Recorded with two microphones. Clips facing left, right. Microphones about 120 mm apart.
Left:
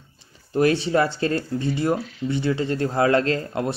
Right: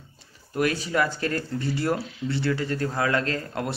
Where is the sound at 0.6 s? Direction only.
30° left (ahead or behind).